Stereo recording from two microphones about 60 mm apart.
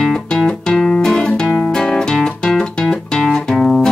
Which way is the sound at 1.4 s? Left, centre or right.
Left.